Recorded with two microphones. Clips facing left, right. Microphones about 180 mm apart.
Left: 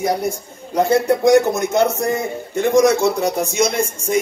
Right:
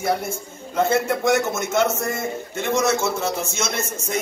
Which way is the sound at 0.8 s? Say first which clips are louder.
Left 5 dB; 15° left (ahead or behind).